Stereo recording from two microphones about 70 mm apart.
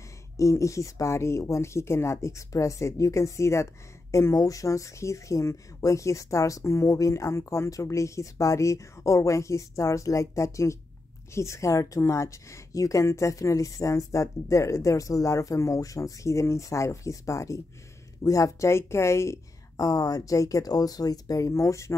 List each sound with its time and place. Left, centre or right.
0.4 s speech: left